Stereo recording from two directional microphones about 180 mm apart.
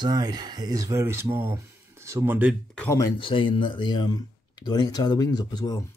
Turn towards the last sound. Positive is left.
turn(degrees=25)  # may be behind; listen again after turning